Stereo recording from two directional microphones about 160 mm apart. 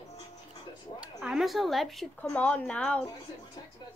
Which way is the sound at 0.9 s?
5° right (ahead or behind).